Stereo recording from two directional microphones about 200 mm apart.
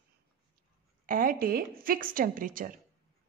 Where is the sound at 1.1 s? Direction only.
45° right (ahead or behind).